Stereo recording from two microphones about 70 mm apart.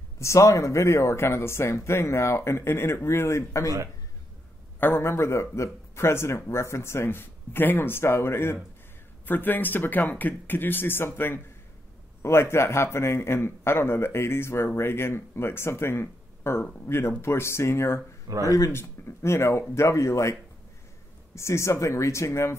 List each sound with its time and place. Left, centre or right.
0.2 s speech: left
4.7 s speech: left
9.2 s speech: left
18.3 s speech: right
18.7 s speech: left
21.4 s speech: left